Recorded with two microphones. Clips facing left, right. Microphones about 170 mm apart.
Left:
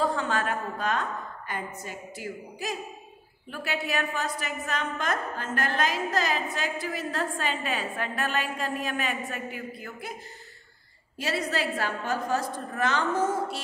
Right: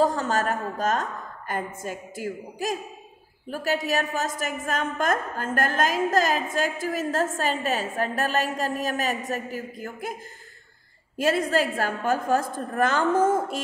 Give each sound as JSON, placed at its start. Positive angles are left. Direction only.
{"t": 0.0, "sound": "a sound", "side_deg": -40}
{"t": 1.5, "sound": "a woman's voice", "side_deg": -45}
{"t": 11.1, "sound": "a woman's voice", "side_deg": -50}